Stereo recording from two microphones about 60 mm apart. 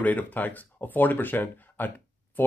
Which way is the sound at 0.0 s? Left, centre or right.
Left.